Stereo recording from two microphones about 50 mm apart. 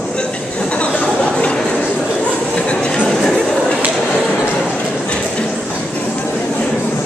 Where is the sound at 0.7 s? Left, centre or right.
Left.